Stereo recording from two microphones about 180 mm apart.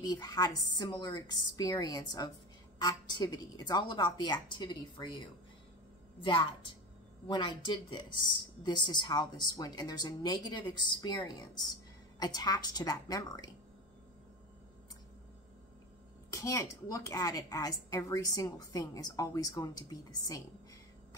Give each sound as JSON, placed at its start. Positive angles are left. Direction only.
{"t": 0.0, "sound": "speech", "side_deg": 20}
{"t": 16.3, "sound": "speech", "side_deg": 15}